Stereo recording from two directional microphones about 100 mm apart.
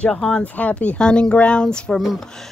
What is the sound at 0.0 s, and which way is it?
Speech, 10° left (ahead or behind).